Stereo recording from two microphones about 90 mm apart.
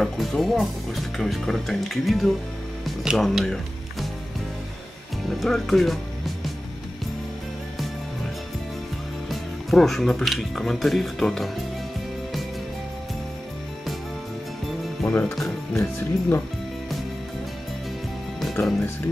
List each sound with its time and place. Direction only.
0.0 s speech: centre (ahead or behind)
5.3 s speech: centre (ahead or behind)
9.3 s speech: centre (ahead or behind)
15.0 s speech: 25° left (ahead or behind)
15.3 s speech: centre (ahead or behind)
15.8 s speech: 20° left (ahead or behind)